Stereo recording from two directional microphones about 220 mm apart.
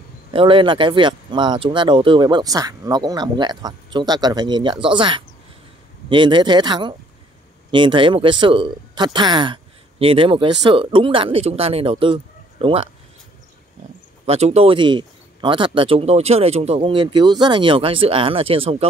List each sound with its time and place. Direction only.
0.3 s speech: 25° right (ahead or behind)
14.2 s speech: 30° right (ahead or behind)